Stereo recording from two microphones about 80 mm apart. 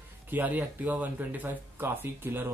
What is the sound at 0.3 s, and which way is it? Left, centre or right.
Speech, right.